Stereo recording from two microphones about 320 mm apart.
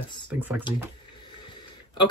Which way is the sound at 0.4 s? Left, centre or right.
Centre.